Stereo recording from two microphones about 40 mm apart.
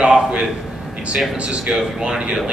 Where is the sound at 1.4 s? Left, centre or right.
Right.